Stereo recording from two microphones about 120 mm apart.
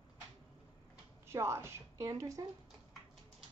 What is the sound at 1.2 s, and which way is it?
A woman's voice, 20° right (ahead or behind).